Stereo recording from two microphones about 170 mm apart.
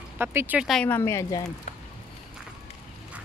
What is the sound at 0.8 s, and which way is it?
Speech, 15° left (ahead or behind).